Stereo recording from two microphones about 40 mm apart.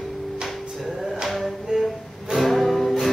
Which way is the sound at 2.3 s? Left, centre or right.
Centre.